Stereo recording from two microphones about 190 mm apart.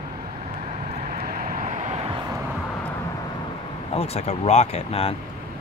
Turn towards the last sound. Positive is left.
turn(degrees=35)  # may be behind; listen again after turning